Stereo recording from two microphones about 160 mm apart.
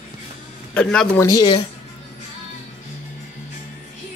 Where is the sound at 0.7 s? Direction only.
5° left (ahead or behind).